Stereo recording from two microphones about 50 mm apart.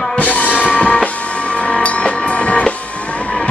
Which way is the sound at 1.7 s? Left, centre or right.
Left.